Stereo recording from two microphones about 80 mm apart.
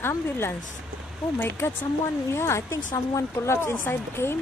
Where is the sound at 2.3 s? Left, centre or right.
Left.